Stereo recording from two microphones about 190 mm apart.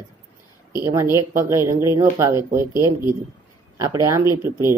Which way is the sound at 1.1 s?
15° right (ahead or behind).